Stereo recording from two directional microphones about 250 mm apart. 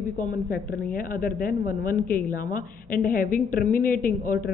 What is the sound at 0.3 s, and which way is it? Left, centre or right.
A woman's voice, left.